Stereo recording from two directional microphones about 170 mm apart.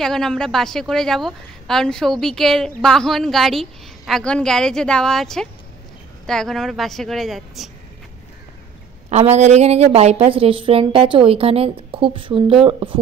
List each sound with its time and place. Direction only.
0.0 s a woman's voice: 5° left (ahead or behind)
9.1 s a woman's voice: 40° right (ahead or behind)